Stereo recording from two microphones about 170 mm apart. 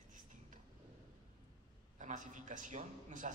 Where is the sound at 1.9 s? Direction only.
50° right (ahead or behind).